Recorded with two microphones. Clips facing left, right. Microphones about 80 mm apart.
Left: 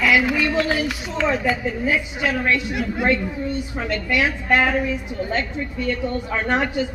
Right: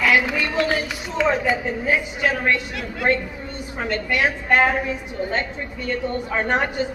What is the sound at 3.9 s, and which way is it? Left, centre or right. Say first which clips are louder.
Speech: even; right.